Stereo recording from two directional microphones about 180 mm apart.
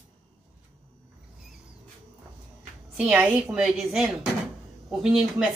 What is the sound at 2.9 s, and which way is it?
Speech, 5° right (ahead or behind).